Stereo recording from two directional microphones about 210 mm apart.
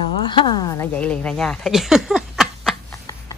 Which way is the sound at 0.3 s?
20° left (ahead or behind).